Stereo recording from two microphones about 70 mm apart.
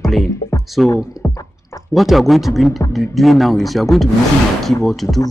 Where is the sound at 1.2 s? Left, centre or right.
Centre.